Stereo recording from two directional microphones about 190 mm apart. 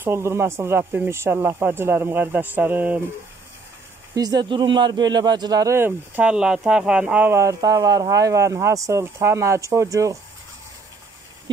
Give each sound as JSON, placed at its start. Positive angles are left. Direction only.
{"t": 0.0, "sound": "speech", "side_deg": -15}
{"t": 4.1, "sound": "speech", "side_deg": -20}